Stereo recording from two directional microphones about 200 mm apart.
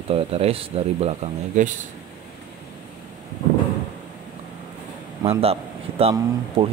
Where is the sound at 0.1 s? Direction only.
30° right (ahead or behind).